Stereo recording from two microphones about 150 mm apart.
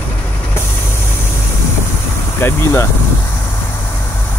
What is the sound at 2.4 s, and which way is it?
Speech, 15° left (ahead or behind).